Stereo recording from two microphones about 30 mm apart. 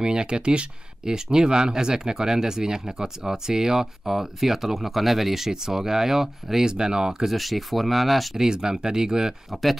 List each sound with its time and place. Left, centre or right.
0.0 s speech: right
7.2 s speech: centre
8.4 s speech: right
9.5 s speech: centre